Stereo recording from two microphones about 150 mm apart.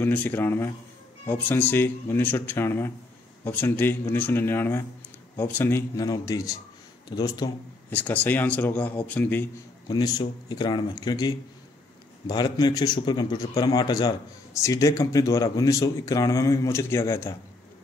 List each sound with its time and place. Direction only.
0.0 s speech: 15° left (ahead or behind)
7.9 s speech: 10° left (ahead or behind)
9.8 s speech: 25° left (ahead or behind)